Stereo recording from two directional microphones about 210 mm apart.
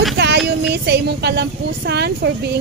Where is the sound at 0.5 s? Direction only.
50° right (ahead or behind).